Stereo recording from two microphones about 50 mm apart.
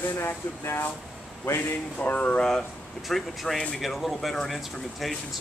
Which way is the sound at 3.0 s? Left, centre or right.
Centre.